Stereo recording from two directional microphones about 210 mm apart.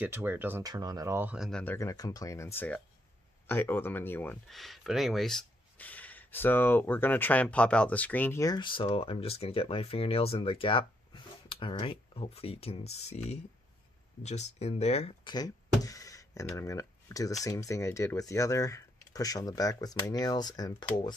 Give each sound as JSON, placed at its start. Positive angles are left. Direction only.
{"t": 0.0, "sound": "speech", "side_deg": -10}